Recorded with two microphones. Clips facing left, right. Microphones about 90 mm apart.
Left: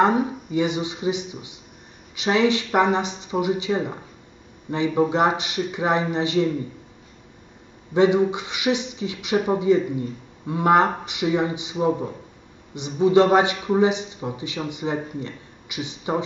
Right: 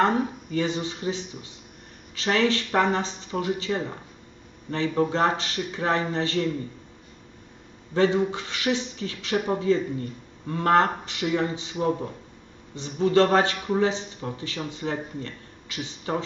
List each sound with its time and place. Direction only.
0.0 s speech: 15° left (ahead or behind)
7.9 s speech: 15° left (ahead or behind)